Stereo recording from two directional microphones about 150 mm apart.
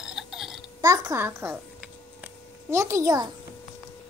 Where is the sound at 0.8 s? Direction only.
20° right (ahead or behind).